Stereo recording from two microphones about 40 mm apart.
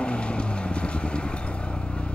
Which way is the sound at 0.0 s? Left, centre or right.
Left.